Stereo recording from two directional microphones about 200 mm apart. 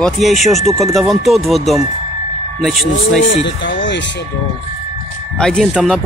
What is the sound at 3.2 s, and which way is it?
Speech, 60° left (ahead or behind).